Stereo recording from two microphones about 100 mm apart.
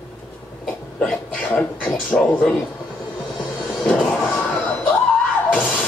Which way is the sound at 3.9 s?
10° left (ahead or behind).